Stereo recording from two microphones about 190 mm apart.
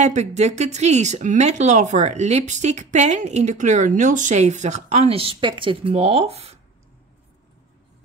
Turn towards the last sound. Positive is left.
turn(degrees=-35)  # may be behind; listen again after turning